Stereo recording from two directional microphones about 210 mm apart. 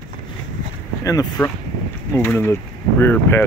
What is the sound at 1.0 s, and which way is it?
Speech, 15° left (ahead or behind).